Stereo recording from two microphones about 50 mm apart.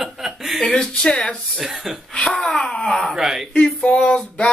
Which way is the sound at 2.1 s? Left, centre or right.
Centre.